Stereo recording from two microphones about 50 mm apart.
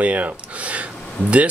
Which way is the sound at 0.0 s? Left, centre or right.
Right.